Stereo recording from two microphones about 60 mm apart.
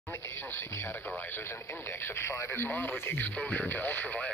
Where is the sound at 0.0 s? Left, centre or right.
Left.